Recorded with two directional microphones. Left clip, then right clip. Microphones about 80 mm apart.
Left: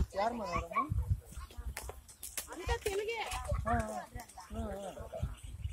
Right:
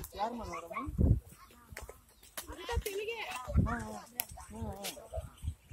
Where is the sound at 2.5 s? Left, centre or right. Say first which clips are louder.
Left 2 dB; right.